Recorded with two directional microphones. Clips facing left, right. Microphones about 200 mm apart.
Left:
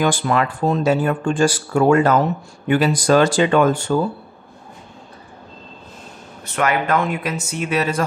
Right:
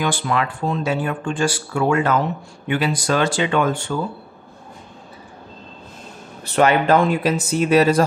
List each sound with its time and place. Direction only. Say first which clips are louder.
0.0 s speech: left 3 dB; 45° left (ahead or behind)
6.4 s speech: right 4 dB; 30° right (ahead or behind)